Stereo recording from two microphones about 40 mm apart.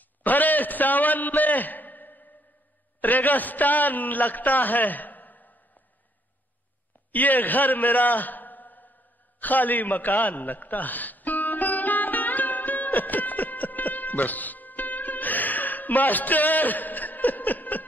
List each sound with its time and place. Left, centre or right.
0.2 s a man's voice: left
7.1 s a man's voice: left
9.4 s a sound: left